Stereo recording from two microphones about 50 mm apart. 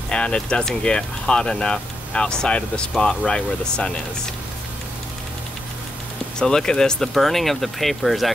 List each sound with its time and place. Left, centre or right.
0.1 s speech: centre
6.4 s speech: centre